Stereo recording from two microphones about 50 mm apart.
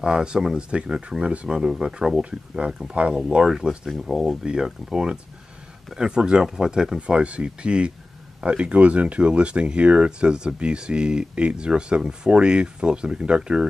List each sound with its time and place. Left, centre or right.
0.0 s speech: centre